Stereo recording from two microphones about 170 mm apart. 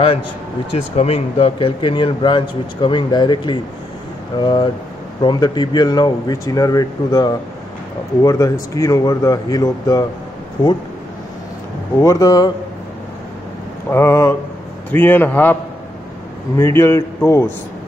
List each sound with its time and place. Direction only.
0.7 s speech: 35° left (ahead or behind); by 10.0 s 20° left (ahead or behind)
12.0 s speech: 20° left (ahead or behind)
13.8 s a man's voice: 15° left (ahead or behind)
16.5 s a man's voice: 15° left (ahead or behind)